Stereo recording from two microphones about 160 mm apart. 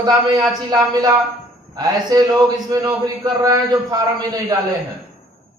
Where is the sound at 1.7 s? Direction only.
25° right (ahead or behind).